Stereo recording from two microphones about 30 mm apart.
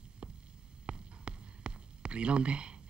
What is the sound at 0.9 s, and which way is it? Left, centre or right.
Hum, right.